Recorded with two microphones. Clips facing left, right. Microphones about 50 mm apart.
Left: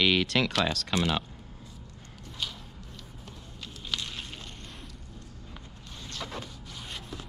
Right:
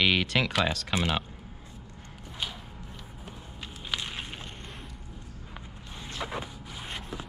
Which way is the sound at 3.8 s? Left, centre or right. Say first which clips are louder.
Right 1 dB; right.